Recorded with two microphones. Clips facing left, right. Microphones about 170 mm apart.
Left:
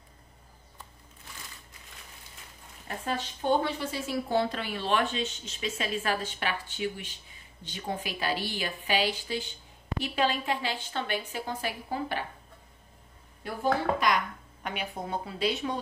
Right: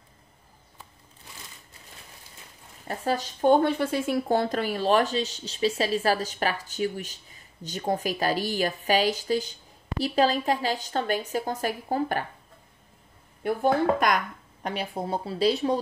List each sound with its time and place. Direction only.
2.9 s a woman's voice: 40° right (ahead or behind)
13.4 s speech: 55° right (ahead or behind)
14.6 s a woman's voice: 35° right (ahead or behind)